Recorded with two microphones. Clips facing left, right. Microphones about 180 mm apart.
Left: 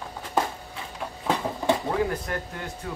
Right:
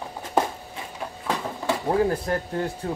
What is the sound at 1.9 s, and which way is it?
Speech, 35° right (ahead or behind).